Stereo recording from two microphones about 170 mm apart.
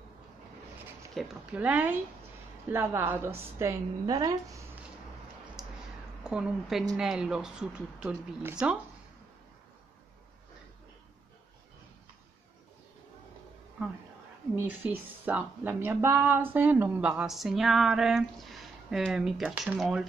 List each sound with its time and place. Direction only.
1.1 s a woman's voice: 10° right (ahead or behind)
6.2 s a woman's voice: 5° right (ahead or behind)
14.5 s a woman's voice: 10° right (ahead or behind)